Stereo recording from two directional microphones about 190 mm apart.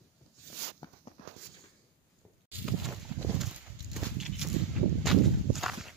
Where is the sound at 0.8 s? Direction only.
20° left (ahead or behind).